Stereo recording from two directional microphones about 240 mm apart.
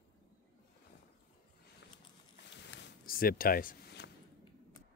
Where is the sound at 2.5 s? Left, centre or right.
Left.